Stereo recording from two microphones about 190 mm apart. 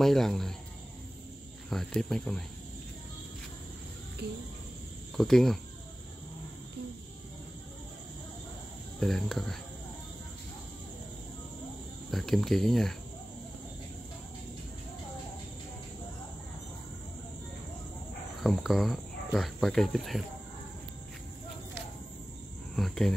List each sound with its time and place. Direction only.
0.0 s speech: centre (ahead or behind)
1.7 s speech: 5° left (ahead or behind)
4.2 s cricket: 60° right (ahead or behind)
5.1 s speech: centre (ahead or behind)
9.0 s speech: centre (ahead or behind)
12.1 s speech: centre (ahead or behind)
18.4 s speech: centre (ahead or behind)
22.8 s speech: centre (ahead or behind)